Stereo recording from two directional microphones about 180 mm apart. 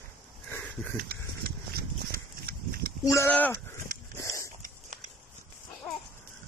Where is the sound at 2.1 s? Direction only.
55° right (ahead or behind).